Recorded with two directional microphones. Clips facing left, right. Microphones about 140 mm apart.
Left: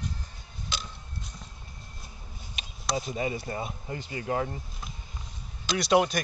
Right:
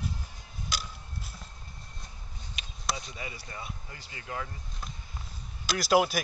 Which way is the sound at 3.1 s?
30° left (ahead or behind).